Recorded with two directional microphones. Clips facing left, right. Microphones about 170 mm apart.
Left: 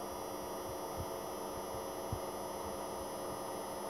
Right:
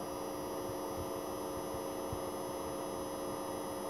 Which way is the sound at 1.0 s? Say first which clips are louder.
Right 3 dB; 5° right (ahead or behind).